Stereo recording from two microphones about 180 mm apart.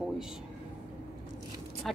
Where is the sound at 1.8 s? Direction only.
Centre (ahead or behind).